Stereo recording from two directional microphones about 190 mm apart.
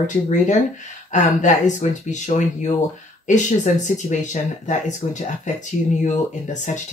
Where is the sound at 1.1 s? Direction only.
40° left (ahead or behind).